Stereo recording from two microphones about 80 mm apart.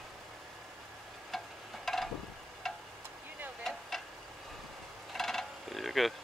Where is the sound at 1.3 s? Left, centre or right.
Centre.